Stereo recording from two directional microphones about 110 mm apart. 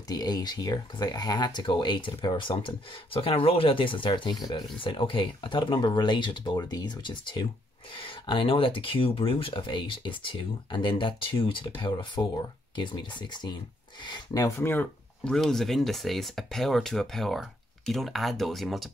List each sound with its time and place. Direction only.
0.1 s speech: 35° left (ahead or behind)
14.4 s speech: 20° left (ahead or behind)
15.3 s speech: centre (ahead or behind)